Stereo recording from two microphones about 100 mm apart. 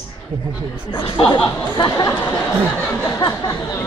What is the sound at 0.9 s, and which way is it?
Speech, 55° left (ahead or behind).